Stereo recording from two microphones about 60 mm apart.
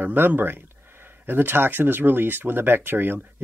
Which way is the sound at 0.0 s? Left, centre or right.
Right.